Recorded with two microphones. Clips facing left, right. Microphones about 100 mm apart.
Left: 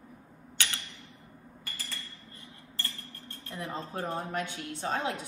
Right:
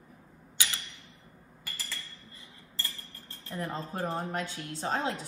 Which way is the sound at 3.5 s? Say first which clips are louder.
Right 2 dB; 45° right (ahead or behind).